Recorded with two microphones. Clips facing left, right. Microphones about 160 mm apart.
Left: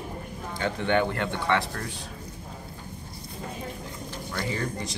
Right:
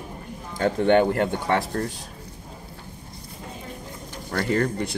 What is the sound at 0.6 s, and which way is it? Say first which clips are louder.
Speech: right 7 dB; 45° right (ahead or behind).